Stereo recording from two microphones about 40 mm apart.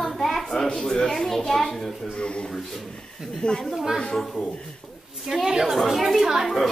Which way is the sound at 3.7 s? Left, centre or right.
Centre.